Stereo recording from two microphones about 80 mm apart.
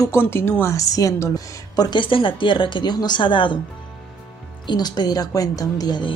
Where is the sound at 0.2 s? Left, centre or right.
Left.